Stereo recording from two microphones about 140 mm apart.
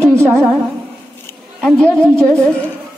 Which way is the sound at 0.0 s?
15° right (ahead or behind).